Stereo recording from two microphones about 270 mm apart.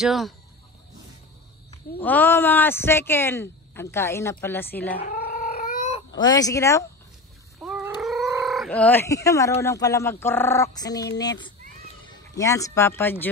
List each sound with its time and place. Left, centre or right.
0.0 s speech: centre
2.0 s speech: centre
5.1 s cat: left; by 6.9 s centre
7.6 s cat: centre
8.3 s speech: centre